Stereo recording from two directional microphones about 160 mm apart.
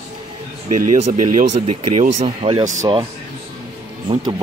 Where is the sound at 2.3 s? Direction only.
35° right (ahead or behind).